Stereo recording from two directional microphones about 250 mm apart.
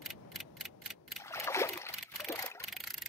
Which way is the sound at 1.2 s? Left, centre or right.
Centre.